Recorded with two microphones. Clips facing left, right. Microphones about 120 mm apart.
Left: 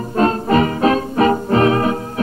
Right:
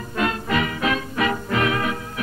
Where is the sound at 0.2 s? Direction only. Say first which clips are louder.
Left 8 dB; 35° left (ahead or behind).